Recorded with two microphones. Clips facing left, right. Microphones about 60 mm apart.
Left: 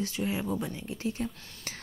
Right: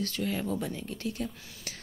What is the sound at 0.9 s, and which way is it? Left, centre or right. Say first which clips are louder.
Speech: left 2 dB; left.